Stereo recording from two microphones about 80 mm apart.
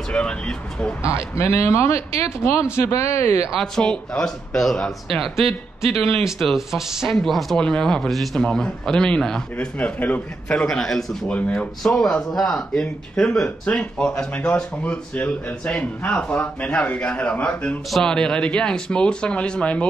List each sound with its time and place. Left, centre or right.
0.1 s speech: centre
1.0 s speech: left
3.5 s speech: centre
11.2 s speech: centre